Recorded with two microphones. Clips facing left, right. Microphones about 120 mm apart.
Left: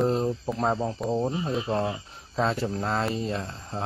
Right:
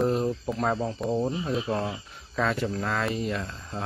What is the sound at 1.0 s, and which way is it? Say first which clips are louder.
Speech: even; 15° left (ahead or behind).